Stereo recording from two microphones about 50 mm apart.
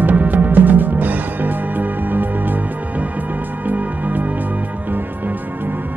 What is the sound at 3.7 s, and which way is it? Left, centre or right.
Music, right.